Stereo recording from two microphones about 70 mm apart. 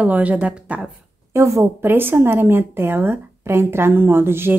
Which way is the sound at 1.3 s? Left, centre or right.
Right.